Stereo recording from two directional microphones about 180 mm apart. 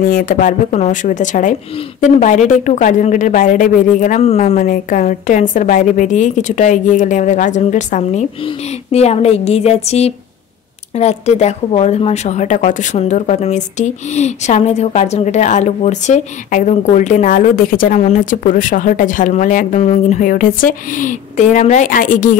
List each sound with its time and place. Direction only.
0.0 s speech: 45° left (ahead or behind)